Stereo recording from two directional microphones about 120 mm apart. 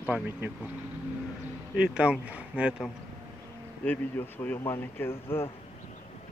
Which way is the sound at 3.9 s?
15° left (ahead or behind).